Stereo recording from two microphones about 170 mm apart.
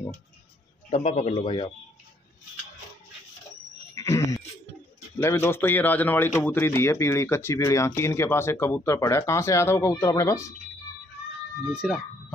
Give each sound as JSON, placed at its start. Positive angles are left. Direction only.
{"t": 0.8, "sound": "a man's voice", "side_deg": 40}
{"t": 1.4, "sound": "speech", "side_deg": 30}
{"t": 3.9, "sound": "sheep", "side_deg": 20}
{"t": 5.2, "sound": "a man's voice", "side_deg": 15}
{"t": 11.7, "sound": "speech", "side_deg": -5}